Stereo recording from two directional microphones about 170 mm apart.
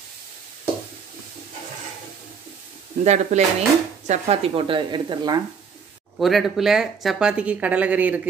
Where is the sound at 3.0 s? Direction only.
40° right (ahead or behind); by 5.4 s 25° right (ahead or behind).